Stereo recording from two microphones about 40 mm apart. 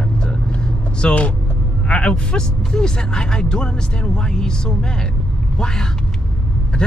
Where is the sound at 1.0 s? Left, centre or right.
Left.